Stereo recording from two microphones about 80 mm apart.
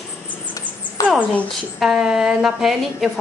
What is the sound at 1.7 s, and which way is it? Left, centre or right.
Speech, centre.